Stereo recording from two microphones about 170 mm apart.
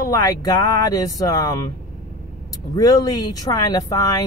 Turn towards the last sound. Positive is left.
turn(degrees=20)  # may be behind; listen again after turning